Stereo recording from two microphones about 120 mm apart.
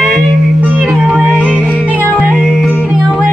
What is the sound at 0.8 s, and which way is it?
Music, centre (ahead or behind).